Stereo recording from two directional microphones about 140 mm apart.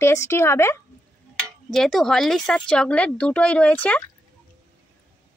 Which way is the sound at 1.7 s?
Centre (ahead or behind).